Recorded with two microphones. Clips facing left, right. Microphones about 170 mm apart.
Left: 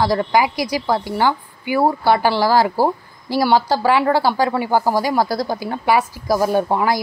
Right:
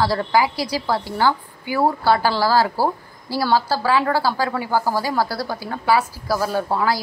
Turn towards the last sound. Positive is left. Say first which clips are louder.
# left 3 dB
turn(degrees=20)  # may be behind; listen again after turning